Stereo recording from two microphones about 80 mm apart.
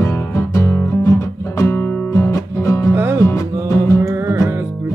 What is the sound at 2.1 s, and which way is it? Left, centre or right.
Music, left.